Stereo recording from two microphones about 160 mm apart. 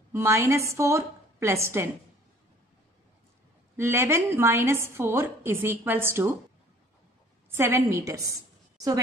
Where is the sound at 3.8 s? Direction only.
15° right (ahead or behind).